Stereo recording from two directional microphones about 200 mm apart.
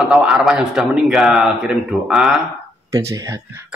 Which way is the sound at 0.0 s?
5° right (ahead or behind).